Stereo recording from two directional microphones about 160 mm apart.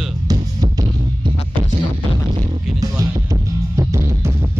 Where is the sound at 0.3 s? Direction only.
25° right (ahead or behind).